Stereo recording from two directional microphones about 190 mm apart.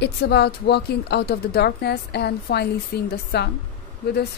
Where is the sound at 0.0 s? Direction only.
60° left (ahead or behind).